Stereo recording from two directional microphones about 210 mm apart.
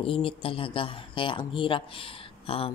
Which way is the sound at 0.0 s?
25° left (ahead or behind).